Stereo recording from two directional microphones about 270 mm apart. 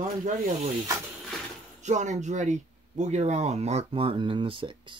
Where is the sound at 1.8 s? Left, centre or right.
Right.